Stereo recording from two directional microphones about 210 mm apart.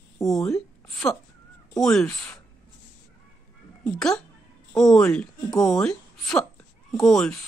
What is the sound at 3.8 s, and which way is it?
Speech, 5° left (ahead or behind).